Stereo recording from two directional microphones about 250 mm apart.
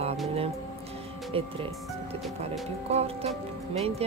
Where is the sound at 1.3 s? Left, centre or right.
Right.